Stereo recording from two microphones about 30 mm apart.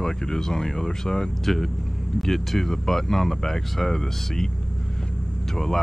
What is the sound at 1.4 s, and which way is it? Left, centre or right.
Speech, centre.